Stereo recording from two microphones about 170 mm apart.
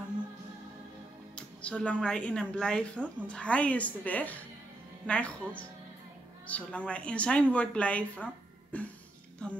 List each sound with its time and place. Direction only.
1.3 s a woman's voice: 5° left (ahead or behind)